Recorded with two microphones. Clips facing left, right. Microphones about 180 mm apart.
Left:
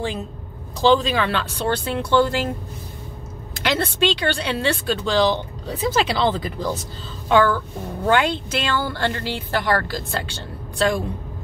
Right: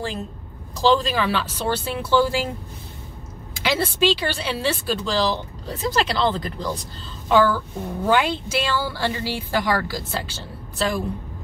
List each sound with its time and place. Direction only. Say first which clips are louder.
0.7 s speech: left 2 dB; centre (ahead or behind)
3.6 s speech: even; 5° right (ahead or behind)